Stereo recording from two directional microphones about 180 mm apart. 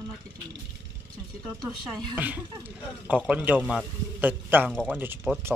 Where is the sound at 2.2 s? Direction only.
10° right (ahead or behind).